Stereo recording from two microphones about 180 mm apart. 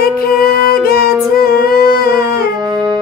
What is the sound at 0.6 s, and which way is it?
Music, 55° left (ahead or behind).